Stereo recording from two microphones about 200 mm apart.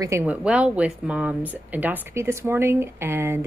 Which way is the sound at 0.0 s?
10° right (ahead or behind).